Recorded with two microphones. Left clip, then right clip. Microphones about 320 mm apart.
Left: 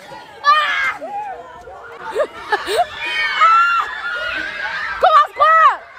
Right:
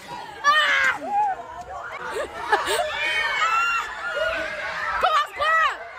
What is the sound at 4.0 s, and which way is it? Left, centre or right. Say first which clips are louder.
Snicker: left 3 dB; centre.